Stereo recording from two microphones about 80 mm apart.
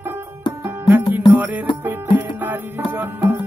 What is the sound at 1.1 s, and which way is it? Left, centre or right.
Music, centre.